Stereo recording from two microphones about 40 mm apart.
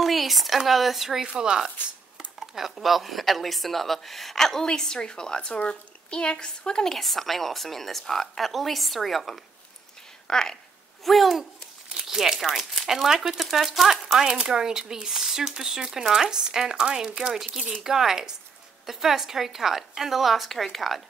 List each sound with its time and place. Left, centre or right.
0.0 s a sound: centre
0.7 s speech: centre
1.2 s speech: right; by 6.9 s centre
6.9 s speech: centre
10.2 s speech: centre
11.1 s speech: centre